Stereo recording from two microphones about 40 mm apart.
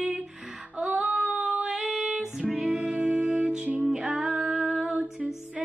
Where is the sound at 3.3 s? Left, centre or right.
Right.